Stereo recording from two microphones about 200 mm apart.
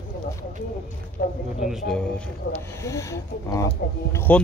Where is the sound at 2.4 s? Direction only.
65° left (ahead or behind).